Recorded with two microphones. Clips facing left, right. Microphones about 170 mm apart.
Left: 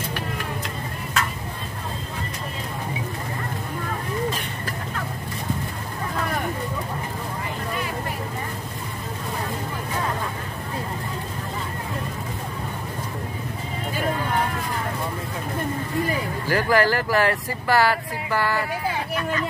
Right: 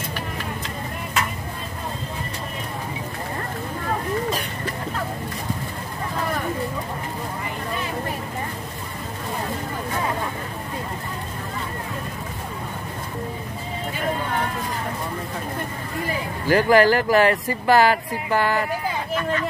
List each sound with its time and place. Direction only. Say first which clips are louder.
16.4 s speech: right 5 dB; 20° right (ahead or behind)